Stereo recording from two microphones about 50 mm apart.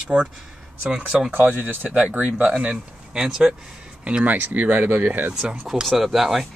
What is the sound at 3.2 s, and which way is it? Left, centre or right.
Speech, centre.